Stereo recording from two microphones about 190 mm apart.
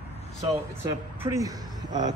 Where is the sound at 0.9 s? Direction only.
15° right (ahead or behind).